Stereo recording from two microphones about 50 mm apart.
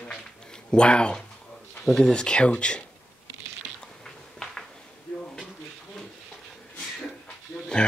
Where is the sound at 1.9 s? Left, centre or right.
Centre.